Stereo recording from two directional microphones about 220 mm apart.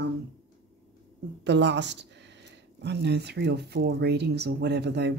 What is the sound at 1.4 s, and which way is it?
Speech, 50° right (ahead or behind).